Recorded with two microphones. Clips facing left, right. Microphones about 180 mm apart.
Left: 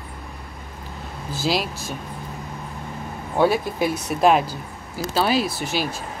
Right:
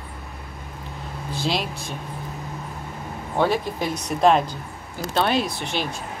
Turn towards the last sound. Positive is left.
turn(degrees=5)  # may be behind; listen again after turning